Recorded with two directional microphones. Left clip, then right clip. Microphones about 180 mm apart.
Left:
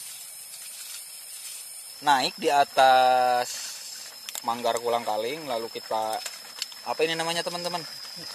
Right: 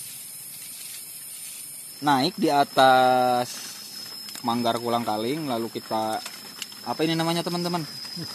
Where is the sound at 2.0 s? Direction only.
10° left (ahead or behind).